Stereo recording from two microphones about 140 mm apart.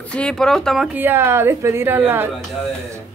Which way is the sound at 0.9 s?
15° right (ahead or behind).